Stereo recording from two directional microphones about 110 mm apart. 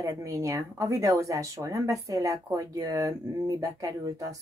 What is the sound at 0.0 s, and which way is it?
Speech, 30° right (ahead or behind).